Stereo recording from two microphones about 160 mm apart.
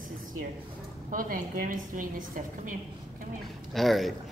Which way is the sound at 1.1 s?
60° right (ahead or behind).